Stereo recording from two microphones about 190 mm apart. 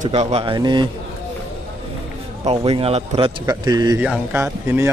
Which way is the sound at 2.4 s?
35° right (ahead or behind).